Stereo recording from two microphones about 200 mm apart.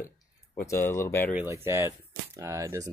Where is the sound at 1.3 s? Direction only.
10° right (ahead or behind).